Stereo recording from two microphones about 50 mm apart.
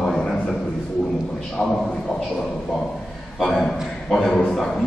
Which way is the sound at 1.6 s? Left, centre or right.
Left.